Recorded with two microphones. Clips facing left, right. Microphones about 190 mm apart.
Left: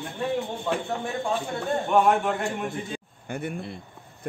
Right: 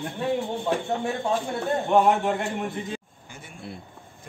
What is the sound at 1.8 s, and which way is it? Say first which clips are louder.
Speech: right 1 dB; 20° right (ahead or behind).